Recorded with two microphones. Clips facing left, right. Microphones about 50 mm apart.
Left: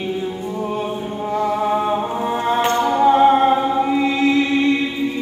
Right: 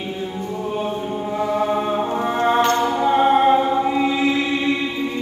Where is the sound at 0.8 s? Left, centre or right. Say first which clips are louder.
Even; centre.